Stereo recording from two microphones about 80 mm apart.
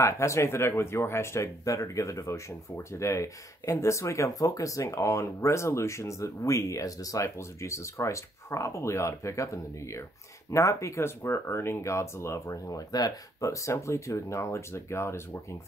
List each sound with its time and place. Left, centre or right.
0.0 s speech: left